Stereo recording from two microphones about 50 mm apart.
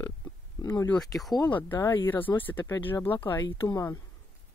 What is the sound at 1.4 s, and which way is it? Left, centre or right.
Speech, left.